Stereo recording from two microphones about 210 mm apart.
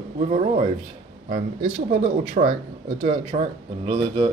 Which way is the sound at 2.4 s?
45° right (ahead or behind).